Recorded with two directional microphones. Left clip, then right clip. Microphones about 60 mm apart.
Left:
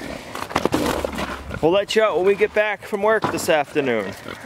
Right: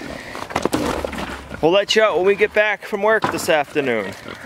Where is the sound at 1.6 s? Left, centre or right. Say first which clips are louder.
Right 2 dB; centre.